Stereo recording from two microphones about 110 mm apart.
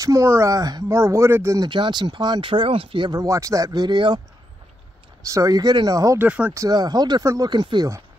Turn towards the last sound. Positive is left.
turn(degrees=-40)  # may be behind; listen again after turning